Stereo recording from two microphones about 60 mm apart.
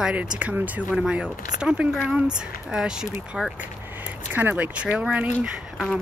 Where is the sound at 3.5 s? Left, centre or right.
Right.